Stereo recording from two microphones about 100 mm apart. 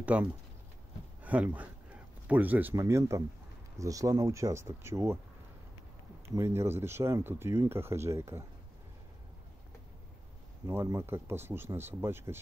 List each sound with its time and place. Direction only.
0.0 s speech: 15° right (ahead or behind)
2.7 s speech: 30° right (ahead or behind)
6.3 s speech: 25° right (ahead or behind)
10.7 s speech: 30° right (ahead or behind)